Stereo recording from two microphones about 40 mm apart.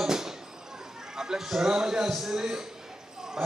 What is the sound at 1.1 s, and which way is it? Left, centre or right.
A man's voice, centre.